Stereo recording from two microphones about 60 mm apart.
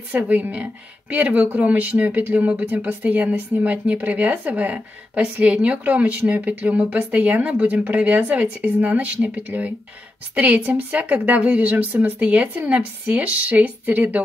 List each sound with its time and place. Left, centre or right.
0.3 s speech: right